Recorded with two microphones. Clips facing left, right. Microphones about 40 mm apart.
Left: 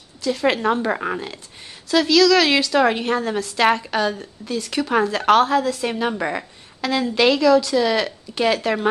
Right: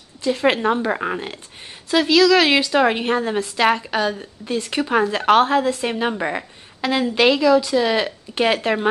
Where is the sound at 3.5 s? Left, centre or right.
Centre.